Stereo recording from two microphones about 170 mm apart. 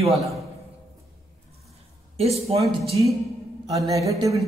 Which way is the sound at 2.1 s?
35° right (ahead or behind).